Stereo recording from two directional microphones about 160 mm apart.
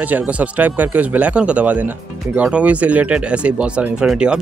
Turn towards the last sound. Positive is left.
turn(degrees=-5)  # may be behind; listen again after turning